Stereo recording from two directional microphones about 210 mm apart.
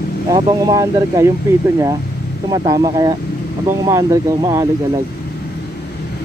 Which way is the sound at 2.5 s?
20° right (ahead or behind).